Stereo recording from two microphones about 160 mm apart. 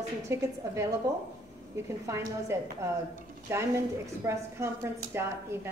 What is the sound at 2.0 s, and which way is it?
A woman's voice, 20° right (ahead or behind).